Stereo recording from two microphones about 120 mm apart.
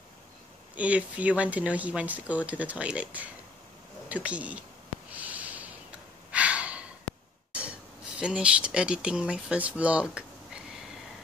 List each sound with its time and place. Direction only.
0.7 s speech: 10° right (ahead or behind)
5.1 s gasp: 10° right (ahead or behind)
8.2 s speech: 10° right (ahead or behind)